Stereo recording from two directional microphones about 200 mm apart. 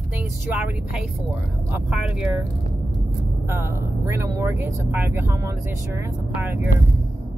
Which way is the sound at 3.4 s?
15° right (ahead or behind).